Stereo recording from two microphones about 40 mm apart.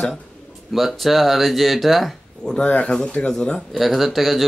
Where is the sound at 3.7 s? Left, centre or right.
Centre.